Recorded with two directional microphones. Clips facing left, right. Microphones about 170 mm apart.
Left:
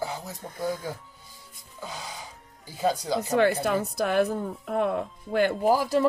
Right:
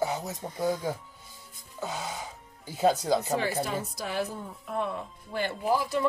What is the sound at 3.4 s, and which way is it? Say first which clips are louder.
Speech: left 7 dB; 65° left (ahead or behind).